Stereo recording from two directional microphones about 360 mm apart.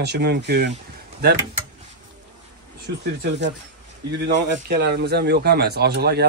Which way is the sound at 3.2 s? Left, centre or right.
Right.